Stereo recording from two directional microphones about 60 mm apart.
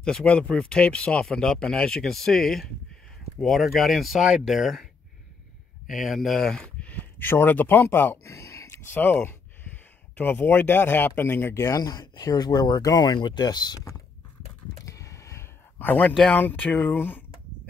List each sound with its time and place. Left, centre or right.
0.0 s speech: centre
5.9 s speech: centre
6.5 s a sound: centre
7.2 s speech: left
8.7 s speech: left
11.6 s speech: left
14.9 s a sound: left
15.8 s speech: left